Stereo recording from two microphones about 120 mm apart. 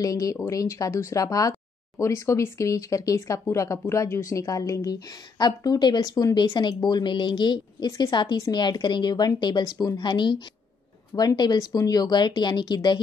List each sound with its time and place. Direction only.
0.0 s speech: 30° left (ahead or behind)